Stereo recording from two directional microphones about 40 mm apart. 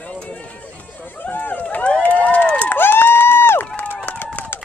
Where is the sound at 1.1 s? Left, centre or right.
Left.